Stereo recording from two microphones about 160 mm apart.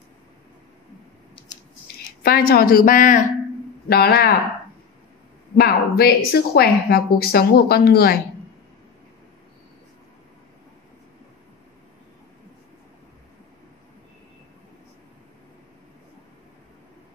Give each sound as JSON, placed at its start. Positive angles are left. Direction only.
{"t": 2.2, "sound": "speech", "side_deg": 70}
{"t": 3.9, "sound": "speech", "side_deg": 75}
{"t": 5.6, "sound": "speech", "side_deg": 80}